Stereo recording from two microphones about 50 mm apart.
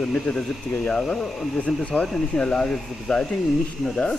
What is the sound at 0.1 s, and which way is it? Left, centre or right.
Speech, left.